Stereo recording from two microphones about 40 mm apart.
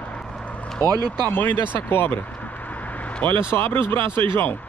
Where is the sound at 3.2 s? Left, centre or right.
Left.